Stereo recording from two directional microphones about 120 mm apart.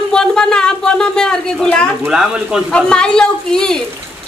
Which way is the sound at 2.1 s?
5° right (ahead or behind).